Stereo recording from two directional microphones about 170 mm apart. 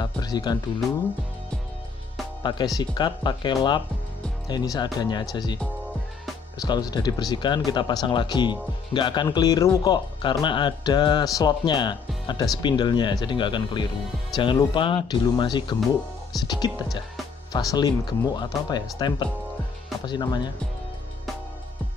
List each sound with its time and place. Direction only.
0.0 s speech: 25° left (ahead or behind)
2.4 s speech: 25° left (ahead or behind)
6.6 s speech: 25° left (ahead or behind)